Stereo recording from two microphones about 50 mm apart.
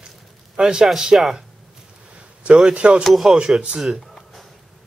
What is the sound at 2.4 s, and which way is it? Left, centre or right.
Speech, centre.